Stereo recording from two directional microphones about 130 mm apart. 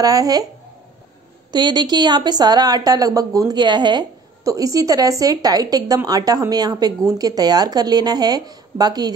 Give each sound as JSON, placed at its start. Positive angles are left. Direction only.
{"t": 0.0, "sound": "a woman's voice", "side_deg": -30}
{"t": 1.5, "sound": "a woman's voice", "side_deg": -35}